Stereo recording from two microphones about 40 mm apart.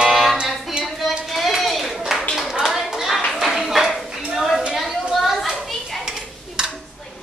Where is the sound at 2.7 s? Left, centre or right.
Centre.